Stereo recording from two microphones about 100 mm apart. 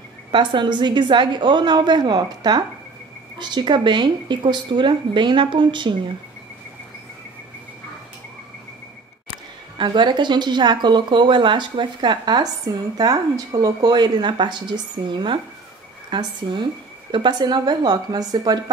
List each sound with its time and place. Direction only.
0.3 s speech: 50° right (ahead or behind)
9.8 s speech: 50° right (ahead or behind)